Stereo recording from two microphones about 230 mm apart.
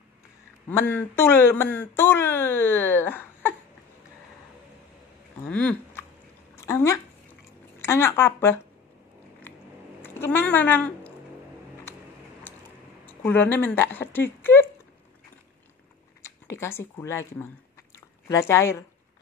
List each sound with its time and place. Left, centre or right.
0.7 s speech: centre
5.4 s speech: centre
6.5 s a sound: centre
7.8 s speech: centre
10.0 s speech: centre
12.5 s a sound: centre
13.0 s speech: centre
16.2 s speech: centre